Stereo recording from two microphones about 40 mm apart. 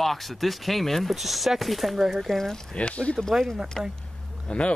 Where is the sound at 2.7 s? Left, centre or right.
Left.